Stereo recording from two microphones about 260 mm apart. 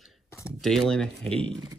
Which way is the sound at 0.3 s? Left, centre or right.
Centre.